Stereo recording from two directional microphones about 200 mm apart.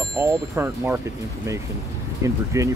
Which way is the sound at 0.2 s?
15° right (ahead or behind).